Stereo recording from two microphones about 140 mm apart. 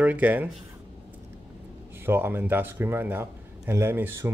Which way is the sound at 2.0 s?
15° right (ahead or behind).